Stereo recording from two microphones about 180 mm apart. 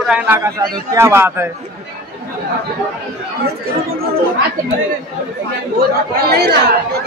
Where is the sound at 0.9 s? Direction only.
15° right (ahead or behind).